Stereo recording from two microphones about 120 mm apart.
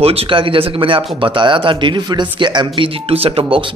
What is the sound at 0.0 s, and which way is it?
Speech, 55° right (ahead or behind).